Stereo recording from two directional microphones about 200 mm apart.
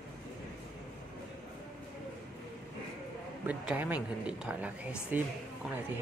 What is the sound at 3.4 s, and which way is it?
Speech, 10° right (ahead or behind).